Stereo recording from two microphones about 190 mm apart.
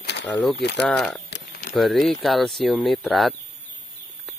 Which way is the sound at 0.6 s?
60° left (ahead or behind).